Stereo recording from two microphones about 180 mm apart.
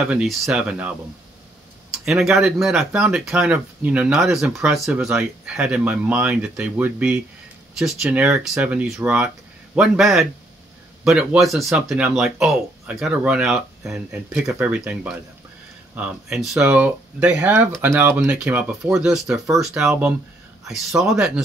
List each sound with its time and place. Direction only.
0.0 s speech: 5° right (ahead or behind)
2.0 s speech: centre (ahead or behind)